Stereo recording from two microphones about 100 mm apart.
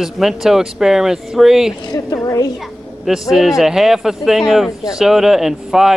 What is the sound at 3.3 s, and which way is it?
Speech, centre (ahead or behind).